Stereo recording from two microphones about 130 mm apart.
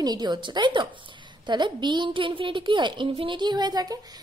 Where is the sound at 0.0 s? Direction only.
30° right (ahead or behind).